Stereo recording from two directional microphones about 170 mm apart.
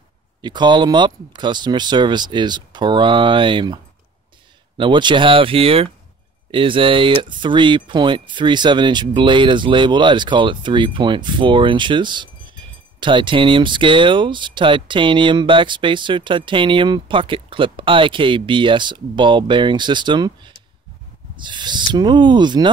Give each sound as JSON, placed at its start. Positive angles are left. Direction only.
{"t": 0.4, "sound": "speech", "side_deg": -25}